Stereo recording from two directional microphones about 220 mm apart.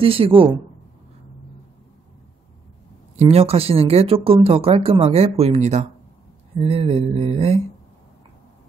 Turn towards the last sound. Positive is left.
turn(degrees=-25)  # may be behind; listen again after turning